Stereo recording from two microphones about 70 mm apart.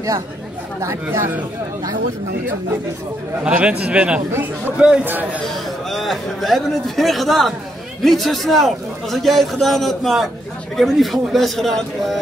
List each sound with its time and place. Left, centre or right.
3.4 s a man's voice: centre
5.0 s a man's voice: right
5.9 s a man's voice: centre